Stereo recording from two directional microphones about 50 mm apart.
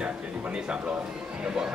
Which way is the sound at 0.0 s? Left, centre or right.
Right.